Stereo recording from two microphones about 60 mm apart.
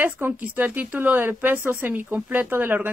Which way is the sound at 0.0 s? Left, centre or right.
Right.